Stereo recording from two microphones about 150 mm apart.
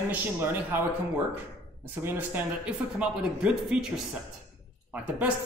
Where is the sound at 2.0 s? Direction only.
10° right (ahead or behind).